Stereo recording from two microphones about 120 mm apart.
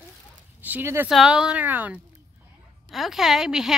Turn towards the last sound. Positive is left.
turn(degrees=-5)  # may be behind; listen again after turning